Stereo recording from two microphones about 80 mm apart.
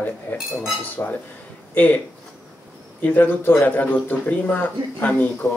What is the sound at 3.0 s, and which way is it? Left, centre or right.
Speech, left.